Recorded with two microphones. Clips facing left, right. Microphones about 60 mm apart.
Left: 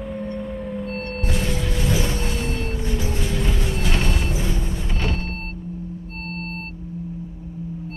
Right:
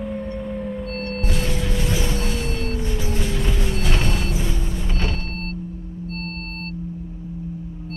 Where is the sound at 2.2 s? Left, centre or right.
Centre.